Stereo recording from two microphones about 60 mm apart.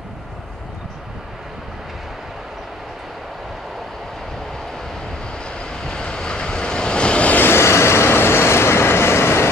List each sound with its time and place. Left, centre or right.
5.3 s vehicle: centre
7.4 s vehicle: left